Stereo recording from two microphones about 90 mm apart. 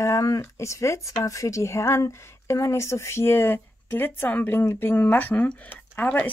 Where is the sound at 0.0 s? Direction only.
35° left (ahead or behind).